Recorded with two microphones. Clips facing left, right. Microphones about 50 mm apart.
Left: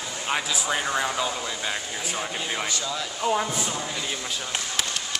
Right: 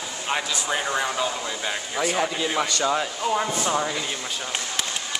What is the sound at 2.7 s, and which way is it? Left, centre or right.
Speech, right.